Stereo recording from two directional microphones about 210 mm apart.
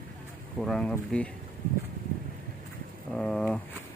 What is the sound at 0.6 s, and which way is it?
Speech, centre (ahead or behind).